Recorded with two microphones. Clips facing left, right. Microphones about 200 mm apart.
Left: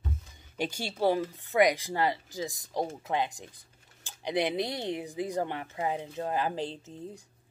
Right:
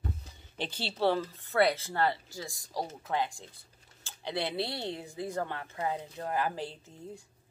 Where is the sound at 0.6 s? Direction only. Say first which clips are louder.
Left 2 dB; 10° left (ahead or behind).